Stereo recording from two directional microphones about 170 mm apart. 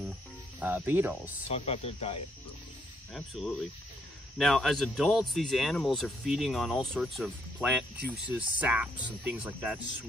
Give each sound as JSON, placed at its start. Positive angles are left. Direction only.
{"t": 0.6, "sound": "speech", "side_deg": -10}
{"t": 1.5, "sound": "speech", "side_deg": 35}
{"t": 3.1, "sound": "speech", "side_deg": 0}